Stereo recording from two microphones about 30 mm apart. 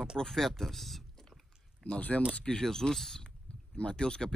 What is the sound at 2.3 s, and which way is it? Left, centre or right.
Speech, left.